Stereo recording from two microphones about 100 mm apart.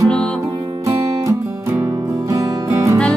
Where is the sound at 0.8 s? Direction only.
30° right (ahead or behind).